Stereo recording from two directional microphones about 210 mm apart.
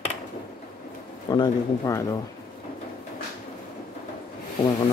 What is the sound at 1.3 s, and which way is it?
Speech, 15° left (ahead or behind).